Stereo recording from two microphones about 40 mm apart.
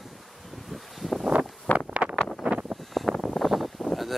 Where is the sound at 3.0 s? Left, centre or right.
Centre.